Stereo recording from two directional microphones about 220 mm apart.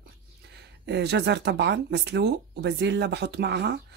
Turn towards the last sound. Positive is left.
turn(degrees=-50)  # may be behind; listen again after turning